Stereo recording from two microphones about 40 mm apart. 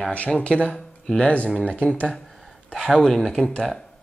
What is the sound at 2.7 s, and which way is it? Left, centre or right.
Speech, centre.